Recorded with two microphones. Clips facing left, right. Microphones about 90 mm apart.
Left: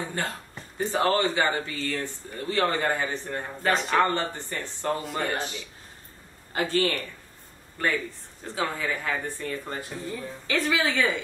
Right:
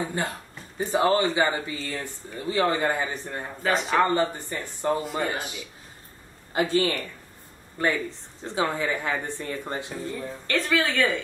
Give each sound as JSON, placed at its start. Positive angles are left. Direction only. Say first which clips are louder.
{"t": 0.2, "sound": "speech", "louder": "right 2 dB", "side_deg": -15}
{"t": 3.6, "sound": "speech", "louder": "right 1 dB", "side_deg": 0}
{"t": 4.1, "sound": "speech", "louder": "right 4 dB", "side_deg": -15}
{"t": 4.9, "sound": "speech", "louder": "right 1 dB", "side_deg": 0}
{"t": 6.5, "sound": "speech", "louder": "right 2 dB", "side_deg": -20}
{"t": 10.0, "sound": "speech", "louder": "right 1 dB", "side_deg": 0}